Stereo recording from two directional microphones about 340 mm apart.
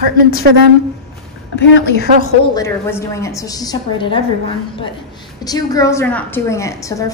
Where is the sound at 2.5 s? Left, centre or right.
Centre.